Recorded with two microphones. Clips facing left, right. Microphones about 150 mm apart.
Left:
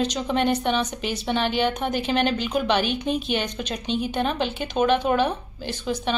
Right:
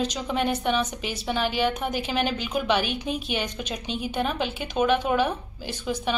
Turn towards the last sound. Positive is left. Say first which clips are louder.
# left 2 dB
turn(degrees=-5)  # may be behind; listen again after turning